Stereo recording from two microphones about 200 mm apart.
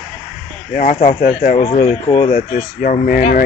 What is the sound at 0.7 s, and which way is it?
Speech, 45° left (ahead or behind).